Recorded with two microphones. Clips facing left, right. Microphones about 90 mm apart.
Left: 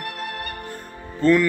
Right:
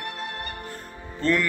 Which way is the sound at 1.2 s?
5° left (ahead or behind).